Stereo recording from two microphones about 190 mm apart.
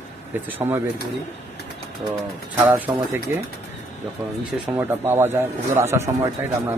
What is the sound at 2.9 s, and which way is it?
Speech, 25° right (ahead or behind).